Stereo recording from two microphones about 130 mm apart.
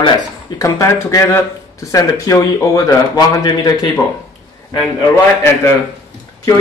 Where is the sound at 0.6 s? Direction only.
25° left (ahead or behind).